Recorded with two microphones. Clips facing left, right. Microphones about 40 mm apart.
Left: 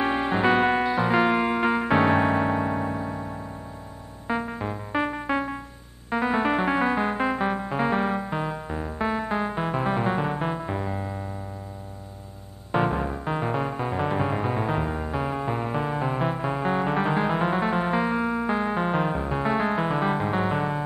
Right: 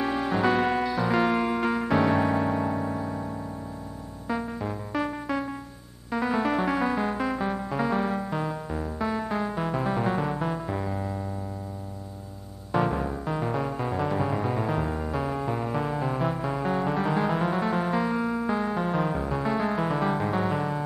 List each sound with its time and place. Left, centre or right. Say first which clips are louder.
0.0 s music: left 2 dB; left
12.7 s music: left 1 dB; left